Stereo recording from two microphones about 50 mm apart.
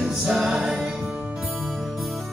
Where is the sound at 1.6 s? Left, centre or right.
Centre.